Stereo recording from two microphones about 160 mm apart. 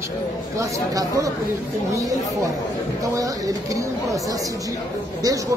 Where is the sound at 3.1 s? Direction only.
20° right (ahead or behind).